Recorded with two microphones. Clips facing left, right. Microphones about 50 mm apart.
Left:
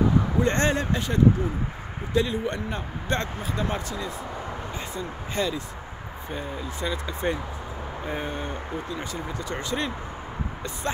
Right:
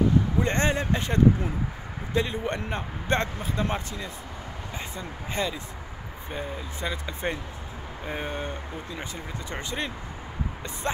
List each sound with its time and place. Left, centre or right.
0.4 s speech: centre
0.9 s speech: right
4.7 s speech: right
8.1 s speech: centre
9.1 s speech: right